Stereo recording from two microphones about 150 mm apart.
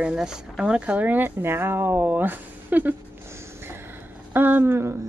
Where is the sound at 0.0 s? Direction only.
5° right (ahead or behind).